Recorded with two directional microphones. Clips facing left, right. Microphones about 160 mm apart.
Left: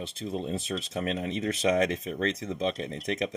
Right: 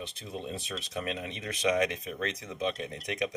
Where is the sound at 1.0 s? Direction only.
35° left (ahead or behind).